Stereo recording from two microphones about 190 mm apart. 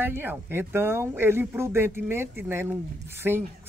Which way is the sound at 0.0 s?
10° right (ahead or behind).